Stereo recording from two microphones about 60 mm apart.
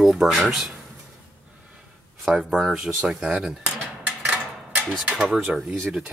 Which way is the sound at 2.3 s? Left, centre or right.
Centre.